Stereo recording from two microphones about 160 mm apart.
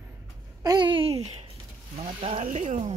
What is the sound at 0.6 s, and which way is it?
Speech, 25° right (ahead or behind).